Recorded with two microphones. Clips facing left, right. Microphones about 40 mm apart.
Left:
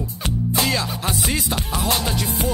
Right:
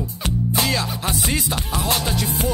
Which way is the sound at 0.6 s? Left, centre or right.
Centre.